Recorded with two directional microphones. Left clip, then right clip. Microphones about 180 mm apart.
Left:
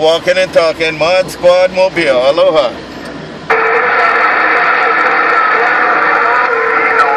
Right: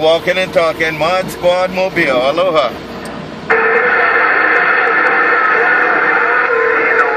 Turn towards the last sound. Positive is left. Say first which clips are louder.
# left 2 dB
turn(degrees=40)  # may be behind; listen again after turning